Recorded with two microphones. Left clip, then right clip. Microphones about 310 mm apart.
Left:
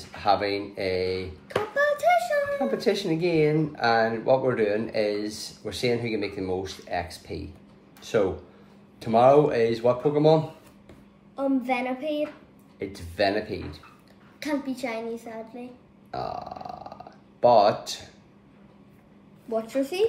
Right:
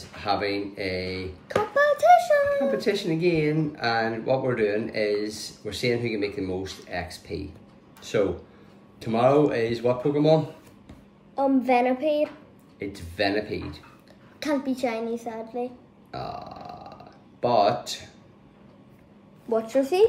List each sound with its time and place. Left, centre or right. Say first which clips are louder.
0.2 s speech: left 2 dB; centre
1.8 s a sound: right 4 dB; centre
2.8 s speech: even; centre
11.3 s child singing: right 5 dB; centre
12.7 s speech: left 1 dB; centre
14.4 s child singing: right 4 dB; centre
16.1 s burping: left 2 dB; centre
19.5 s child singing: right 4 dB; centre